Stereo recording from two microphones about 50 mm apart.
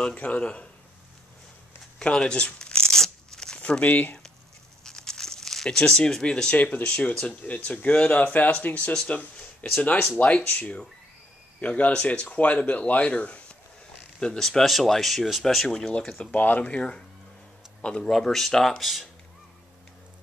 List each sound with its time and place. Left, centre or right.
0.0 s speech: left
2.0 s tearing: centre
3.8 s speech: left
4.8 s crumpling: centre
6.5 s speech: left
14.2 s speech: centre
14.6 s speech: centre
16.0 s speech: centre
16.3 s speech: left
18.1 s speech: centre
18.8 s speech: centre